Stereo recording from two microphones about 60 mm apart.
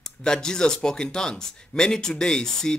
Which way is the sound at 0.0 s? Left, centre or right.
Centre.